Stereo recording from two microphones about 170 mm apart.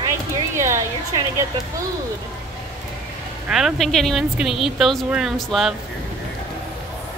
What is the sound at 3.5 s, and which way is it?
Speech, centre (ahead or behind).